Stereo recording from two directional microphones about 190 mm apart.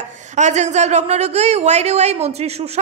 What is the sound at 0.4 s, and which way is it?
A man's voice, 40° right (ahead or behind).